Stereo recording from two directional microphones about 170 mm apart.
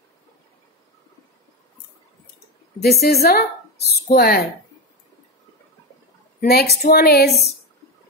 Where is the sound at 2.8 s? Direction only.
65° left (ahead or behind).